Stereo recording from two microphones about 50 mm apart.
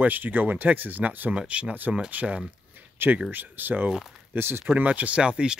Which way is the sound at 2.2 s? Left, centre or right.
Right.